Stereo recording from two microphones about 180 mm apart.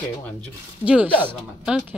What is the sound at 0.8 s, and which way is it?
Speech, 5° right (ahead or behind).